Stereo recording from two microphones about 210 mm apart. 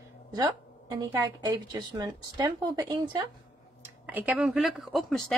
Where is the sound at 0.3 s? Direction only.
15° right (ahead or behind).